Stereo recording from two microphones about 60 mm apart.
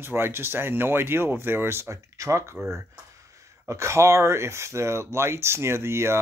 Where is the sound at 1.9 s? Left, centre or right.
Right.